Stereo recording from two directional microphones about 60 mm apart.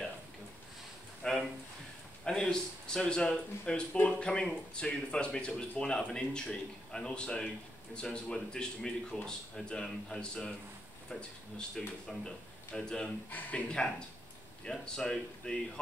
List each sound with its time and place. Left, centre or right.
1.2 s a sound: centre
2.2 s speech: centre
13.3 s speech: left
13.7 s speech: centre